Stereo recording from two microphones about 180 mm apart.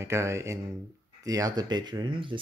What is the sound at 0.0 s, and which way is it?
Speech, 15° right (ahead or behind).